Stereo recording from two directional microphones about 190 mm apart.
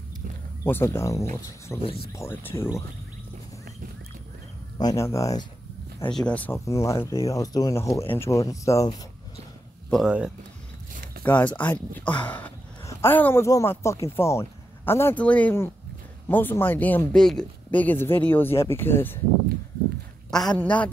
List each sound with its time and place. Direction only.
0.7 s speech: 10° left (ahead or behind)
4.7 s speech: 20° left (ahead or behind)
6.1 s speech: 5° left (ahead or behind)
9.8 s speech: centre (ahead or behind)
11.2 s speech: 10° left (ahead or behind)
20.2 s speech: 5° left (ahead or behind)